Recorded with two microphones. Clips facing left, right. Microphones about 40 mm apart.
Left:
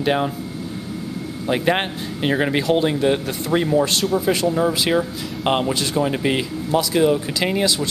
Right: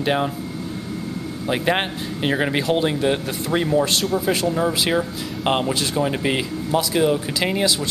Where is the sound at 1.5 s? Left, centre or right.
Centre.